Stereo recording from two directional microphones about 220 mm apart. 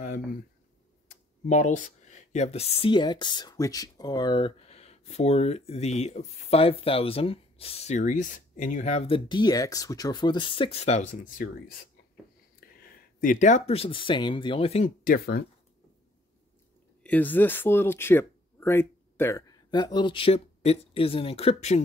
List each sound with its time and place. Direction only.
0.0 s a sound: 40° left (ahead or behind)
1.5 s speech: 35° left (ahead or behind)
13.2 s speech: 35° left (ahead or behind)
15.1 s speech: 45° left (ahead or behind)
17.0 s speech: 10° left (ahead or behind); by 21.8 s 30° left (ahead or behind)